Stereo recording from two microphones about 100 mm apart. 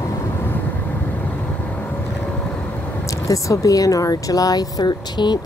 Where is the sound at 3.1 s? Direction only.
35° left (ahead or behind).